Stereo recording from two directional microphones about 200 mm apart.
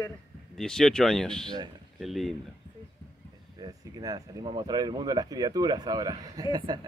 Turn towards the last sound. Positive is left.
turn(degrees=-20)  # may be behind; listen again after turning